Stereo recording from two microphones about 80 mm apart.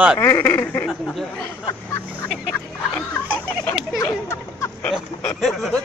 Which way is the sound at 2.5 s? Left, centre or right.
Centre.